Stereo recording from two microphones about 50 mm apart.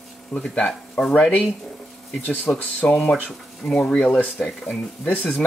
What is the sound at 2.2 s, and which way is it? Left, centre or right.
Speech, left.